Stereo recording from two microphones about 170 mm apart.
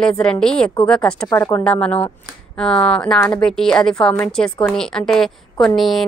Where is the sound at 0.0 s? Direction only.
5° left (ahead or behind).